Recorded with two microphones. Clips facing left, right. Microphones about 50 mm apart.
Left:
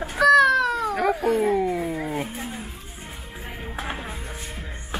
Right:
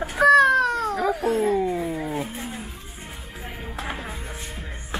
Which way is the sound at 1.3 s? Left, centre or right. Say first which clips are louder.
Even; left.